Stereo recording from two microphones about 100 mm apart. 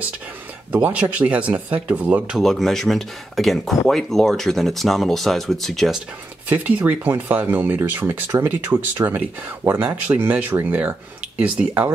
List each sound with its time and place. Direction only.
0.7 s speech: 10° right (ahead or behind)
2.4 s speech: 5° left (ahead or behind)
6.5 s speech: 15° right (ahead or behind); by 9.2 s 30° right (ahead or behind)
9.7 s speech: 20° right (ahead or behind)